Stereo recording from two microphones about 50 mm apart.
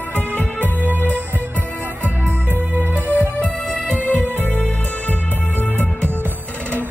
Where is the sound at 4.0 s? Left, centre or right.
Left.